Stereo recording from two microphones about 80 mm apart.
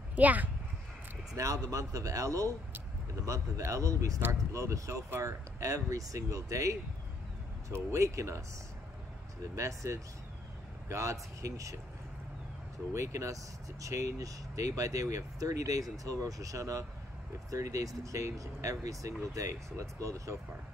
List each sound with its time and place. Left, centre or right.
0.1 s speech: right
1.3 s speech: right
9.6 s speech: right
12.9 s speech: right